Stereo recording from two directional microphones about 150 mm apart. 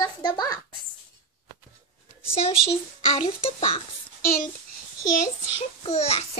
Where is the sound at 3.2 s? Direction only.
35° left (ahead or behind).